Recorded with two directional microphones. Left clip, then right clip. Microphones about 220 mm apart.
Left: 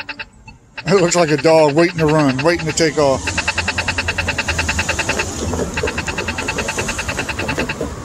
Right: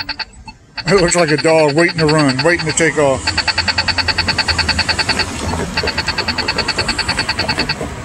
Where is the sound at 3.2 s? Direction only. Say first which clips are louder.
Right 3 dB; 50° right (ahead or behind).